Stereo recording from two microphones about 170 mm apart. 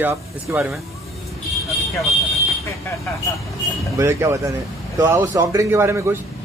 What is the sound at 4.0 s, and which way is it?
Speech, 15° right (ahead or behind).